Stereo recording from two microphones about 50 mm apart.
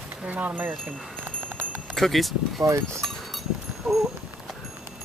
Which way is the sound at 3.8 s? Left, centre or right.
Centre.